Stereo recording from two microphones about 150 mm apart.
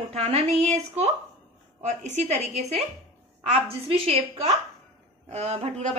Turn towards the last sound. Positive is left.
turn(degrees=-50)  # may be behind; listen again after turning